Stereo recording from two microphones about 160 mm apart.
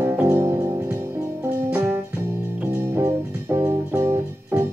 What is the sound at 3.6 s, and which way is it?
Music, 20° right (ahead or behind).